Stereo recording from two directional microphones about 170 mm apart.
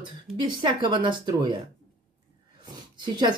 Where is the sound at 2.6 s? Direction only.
25° right (ahead or behind).